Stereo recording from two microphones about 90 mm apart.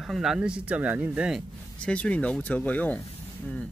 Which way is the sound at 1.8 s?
15° left (ahead or behind).